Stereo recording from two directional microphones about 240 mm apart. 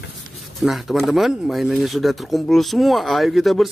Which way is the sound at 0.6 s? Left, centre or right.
Centre.